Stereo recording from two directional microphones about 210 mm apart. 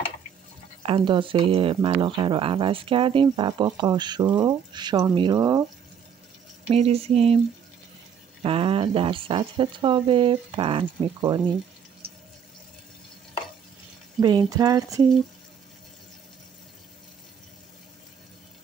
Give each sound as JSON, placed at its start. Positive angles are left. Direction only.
{"t": 0.8, "sound": "speech", "side_deg": -25}
{"t": 6.7, "sound": "speech", "side_deg": -30}
{"t": 8.4, "sound": "speech", "side_deg": -25}
{"t": 14.2, "sound": "speech", "side_deg": -20}